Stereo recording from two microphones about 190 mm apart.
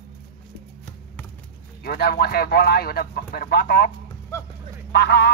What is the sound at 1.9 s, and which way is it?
Speech, 55° left (ahead or behind).